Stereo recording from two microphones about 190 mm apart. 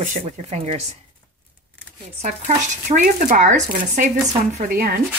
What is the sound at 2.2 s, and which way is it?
Speech, 40° right (ahead or behind).